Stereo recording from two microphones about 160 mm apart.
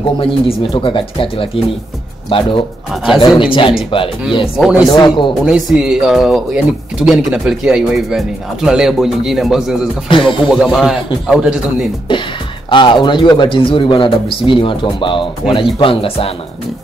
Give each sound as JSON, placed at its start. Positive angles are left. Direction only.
{"t": 0.2, "sound": "a man's voice", "side_deg": 35}
{"t": 4.6, "sound": "speech", "side_deg": -5}
{"t": 4.8, "sound": "a man's voice", "side_deg": 25}
{"t": 5.4, "sound": "speech", "side_deg": -5}
{"t": 12.6, "sound": "a man's voice", "side_deg": 30}